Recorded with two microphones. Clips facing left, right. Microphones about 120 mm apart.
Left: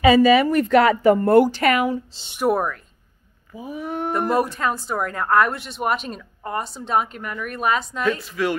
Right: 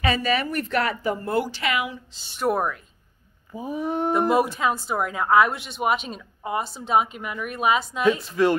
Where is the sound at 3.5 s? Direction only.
25° right (ahead or behind).